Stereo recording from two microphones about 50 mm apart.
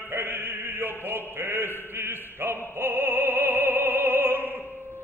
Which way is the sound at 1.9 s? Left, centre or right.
Right.